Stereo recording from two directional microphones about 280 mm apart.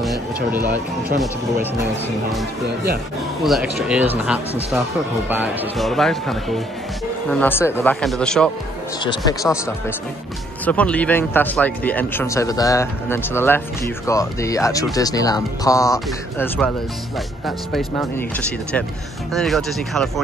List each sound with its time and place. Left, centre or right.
0.0 s speech: centre
3.4 s speech: centre
9.0 s speech: centre
19.3 s speech: centre